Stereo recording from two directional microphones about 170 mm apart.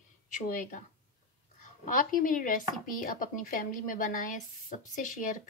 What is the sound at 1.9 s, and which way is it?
Chopping, 55° left (ahead or behind).